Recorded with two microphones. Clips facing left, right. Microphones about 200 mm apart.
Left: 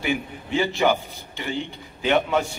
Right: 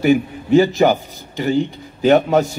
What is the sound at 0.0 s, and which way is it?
A man's voice, 40° right (ahead or behind).